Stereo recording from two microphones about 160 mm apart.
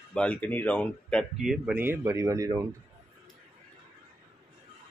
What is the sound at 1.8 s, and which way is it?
Speech, 15° right (ahead or behind).